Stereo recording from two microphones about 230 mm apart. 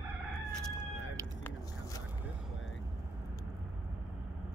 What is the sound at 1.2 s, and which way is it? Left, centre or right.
Vehicle, centre.